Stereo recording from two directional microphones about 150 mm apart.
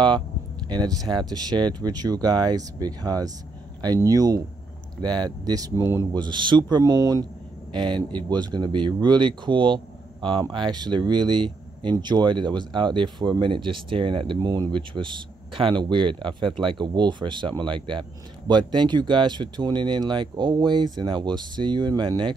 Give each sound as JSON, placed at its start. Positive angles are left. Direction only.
{"t": 0.7, "sound": "speech", "side_deg": -25}